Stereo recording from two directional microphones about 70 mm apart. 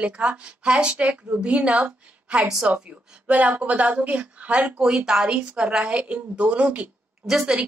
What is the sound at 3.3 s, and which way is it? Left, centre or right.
A woman's voice, right.